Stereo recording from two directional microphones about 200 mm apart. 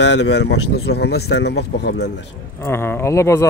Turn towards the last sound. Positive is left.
turn(degrees=15)  # may be behind; listen again after turning